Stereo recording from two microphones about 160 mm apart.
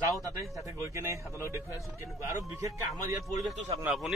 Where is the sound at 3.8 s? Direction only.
Centre (ahead or behind).